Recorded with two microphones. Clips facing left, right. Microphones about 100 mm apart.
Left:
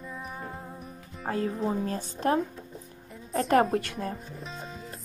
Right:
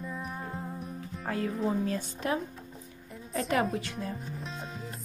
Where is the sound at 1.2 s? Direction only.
30° left (ahead or behind).